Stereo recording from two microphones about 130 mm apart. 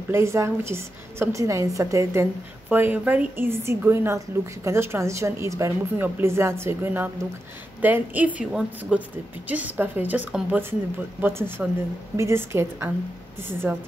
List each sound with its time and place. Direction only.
0.1 s a woman's voice: 20° right (ahead or behind)